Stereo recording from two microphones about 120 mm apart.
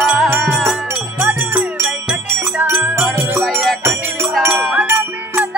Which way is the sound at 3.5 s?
5° left (ahead or behind).